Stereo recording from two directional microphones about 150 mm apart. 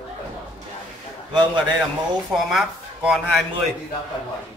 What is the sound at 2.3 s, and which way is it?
Speech, 5° right (ahead or behind).